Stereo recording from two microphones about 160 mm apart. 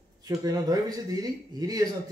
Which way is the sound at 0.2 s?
25° right (ahead or behind).